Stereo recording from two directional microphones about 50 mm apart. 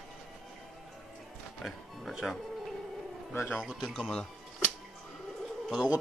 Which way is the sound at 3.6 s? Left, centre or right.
Centre.